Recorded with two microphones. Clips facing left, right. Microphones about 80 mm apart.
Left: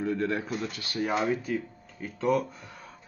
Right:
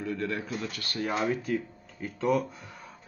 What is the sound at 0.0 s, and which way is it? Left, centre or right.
A man's voice, left.